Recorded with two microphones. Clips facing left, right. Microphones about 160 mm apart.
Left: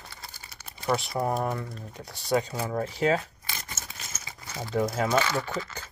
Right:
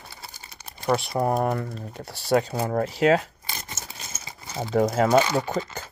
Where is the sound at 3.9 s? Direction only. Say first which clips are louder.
Right 3 dB; 30° right (ahead or behind).